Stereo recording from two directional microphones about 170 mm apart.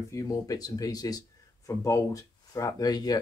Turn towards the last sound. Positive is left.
turn(degrees=25)  # may be behind; listen again after turning